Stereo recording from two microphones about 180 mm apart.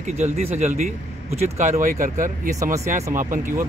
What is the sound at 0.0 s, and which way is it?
Speech, 35° right (ahead or behind).